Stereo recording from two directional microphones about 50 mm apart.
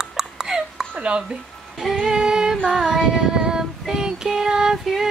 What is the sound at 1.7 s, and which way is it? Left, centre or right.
Female singing, centre.